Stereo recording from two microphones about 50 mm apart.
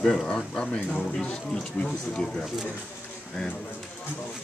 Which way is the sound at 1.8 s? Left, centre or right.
Left.